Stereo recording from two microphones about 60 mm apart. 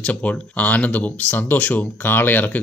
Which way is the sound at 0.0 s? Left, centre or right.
Left.